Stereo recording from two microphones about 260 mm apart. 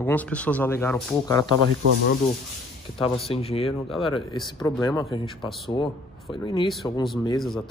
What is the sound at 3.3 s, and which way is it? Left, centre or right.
Speech, left.